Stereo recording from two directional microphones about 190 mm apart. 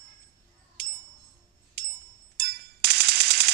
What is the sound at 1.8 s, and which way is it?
Machine gun, 60° right (ahead or behind).